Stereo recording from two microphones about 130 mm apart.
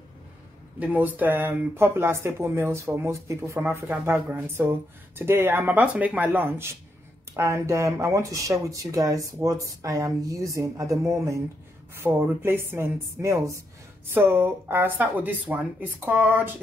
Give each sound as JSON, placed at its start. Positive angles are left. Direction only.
{"t": 0.7, "sound": "speech", "side_deg": -15}